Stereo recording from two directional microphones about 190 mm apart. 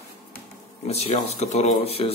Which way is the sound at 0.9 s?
35° left (ahead or behind).